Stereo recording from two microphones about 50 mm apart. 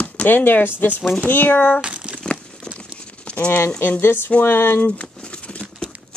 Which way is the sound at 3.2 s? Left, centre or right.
Left.